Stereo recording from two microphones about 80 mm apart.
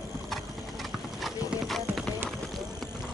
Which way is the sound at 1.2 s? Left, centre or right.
Centre.